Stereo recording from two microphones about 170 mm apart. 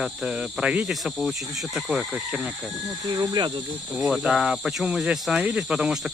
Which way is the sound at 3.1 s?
20° right (ahead or behind).